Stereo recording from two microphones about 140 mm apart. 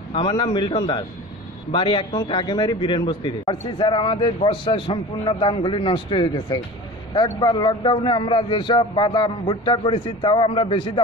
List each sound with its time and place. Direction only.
0.1 s a man's voice: 35° left (ahead or behind)